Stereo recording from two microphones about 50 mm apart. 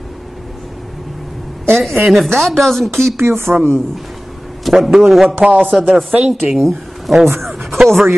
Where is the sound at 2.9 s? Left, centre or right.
Right.